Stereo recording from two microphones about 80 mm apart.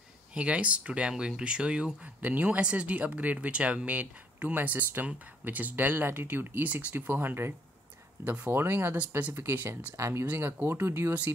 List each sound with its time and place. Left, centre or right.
0.3 s speech: centre
9.9 s speech: right